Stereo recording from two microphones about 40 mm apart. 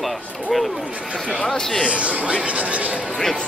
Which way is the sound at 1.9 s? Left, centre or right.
Right.